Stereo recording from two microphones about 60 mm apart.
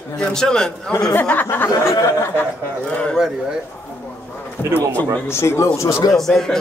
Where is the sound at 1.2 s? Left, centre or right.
Left.